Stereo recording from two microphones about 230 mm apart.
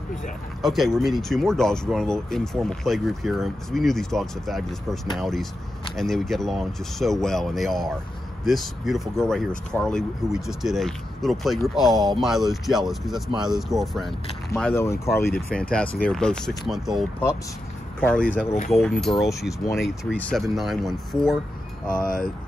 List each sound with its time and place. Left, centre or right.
0.1 s speech: centre
18.0 s speech: centre
22.0 s speech: left